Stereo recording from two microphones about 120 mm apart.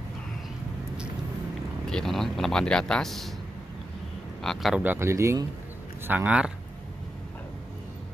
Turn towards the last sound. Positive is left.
turn(degrees=-10)  # may be behind; listen again after turning